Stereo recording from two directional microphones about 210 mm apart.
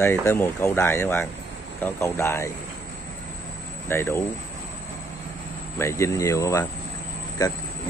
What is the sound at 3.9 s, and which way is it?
Speech, 10° left (ahead or behind).